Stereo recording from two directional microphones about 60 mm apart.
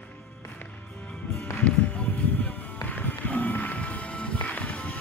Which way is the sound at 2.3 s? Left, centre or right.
Left.